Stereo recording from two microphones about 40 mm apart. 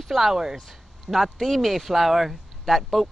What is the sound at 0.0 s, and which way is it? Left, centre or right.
Speech, centre.